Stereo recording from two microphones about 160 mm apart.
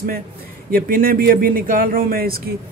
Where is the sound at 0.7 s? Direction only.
60° right (ahead or behind).